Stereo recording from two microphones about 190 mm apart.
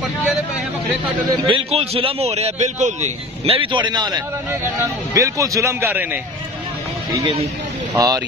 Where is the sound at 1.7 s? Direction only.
30° right (ahead or behind); by 6.1 s 10° right (ahead or behind).